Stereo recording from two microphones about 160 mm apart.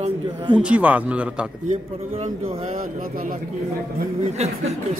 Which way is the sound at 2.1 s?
35° right (ahead or behind).